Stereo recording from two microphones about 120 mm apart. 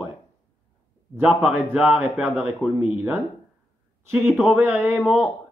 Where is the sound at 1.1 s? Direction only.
15° right (ahead or behind).